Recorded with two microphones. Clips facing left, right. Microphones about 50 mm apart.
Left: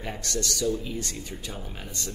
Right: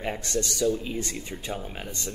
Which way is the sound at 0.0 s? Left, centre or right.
Right.